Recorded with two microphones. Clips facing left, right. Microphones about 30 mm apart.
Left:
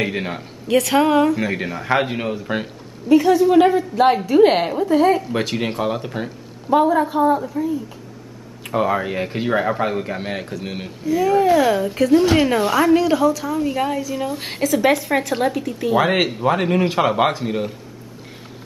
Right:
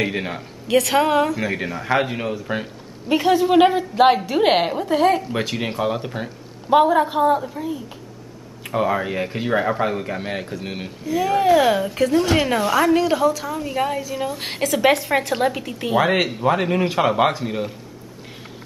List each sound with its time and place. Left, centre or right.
0.0 s a woman's voice: centre
3.1 s a man's voice: right
5.3 s a woman's voice: centre
6.7 s a man's voice: right
8.6 s a woman's voice: centre
11.9 s a woman's voice: centre
16.0 s a woman's voice: centre